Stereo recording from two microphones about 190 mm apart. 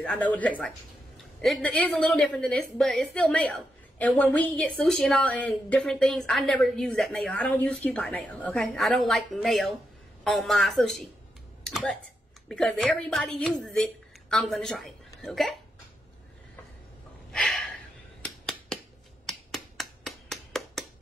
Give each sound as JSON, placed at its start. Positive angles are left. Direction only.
{"t": 0.0, "sound": "a woman's voice", "side_deg": 5}
{"t": 11.6, "sound": "typing", "side_deg": 5}
{"t": 12.4, "sound": "a woman's voice", "side_deg": 5}
{"t": 17.3, "sound": "a sound", "side_deg": 5}
{"t": 18.2, "sound": "finger snapping", "side_deg": 5}